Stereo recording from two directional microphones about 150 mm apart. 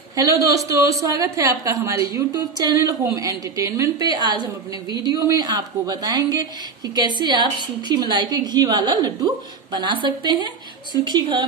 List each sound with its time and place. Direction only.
0.1 s a woman's voice: 25° right (ahead or behind)